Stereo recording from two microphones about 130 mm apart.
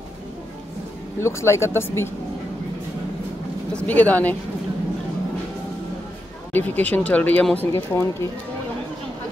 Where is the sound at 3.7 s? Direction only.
10° left (ahead or behind).